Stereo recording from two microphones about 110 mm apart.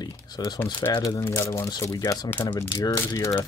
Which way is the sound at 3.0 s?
30° left (ahead or behind).